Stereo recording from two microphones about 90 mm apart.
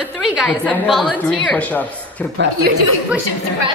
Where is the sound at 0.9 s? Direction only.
5° left (ahead or behind).